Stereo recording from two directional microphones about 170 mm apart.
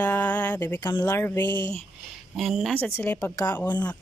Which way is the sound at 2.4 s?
Centre (ahead or behind).